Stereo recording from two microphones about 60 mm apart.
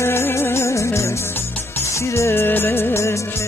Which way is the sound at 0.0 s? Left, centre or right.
Left.